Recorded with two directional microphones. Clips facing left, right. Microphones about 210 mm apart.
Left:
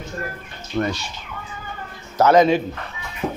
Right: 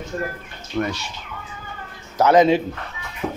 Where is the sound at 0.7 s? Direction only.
20° left (ahead or behind).